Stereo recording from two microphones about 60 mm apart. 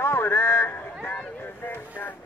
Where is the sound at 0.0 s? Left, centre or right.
Left.